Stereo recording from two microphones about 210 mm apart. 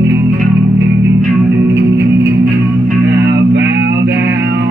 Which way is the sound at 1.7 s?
55° right (ahead or behind).